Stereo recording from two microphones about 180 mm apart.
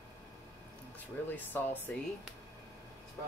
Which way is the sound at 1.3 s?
10° left (ahead or behind).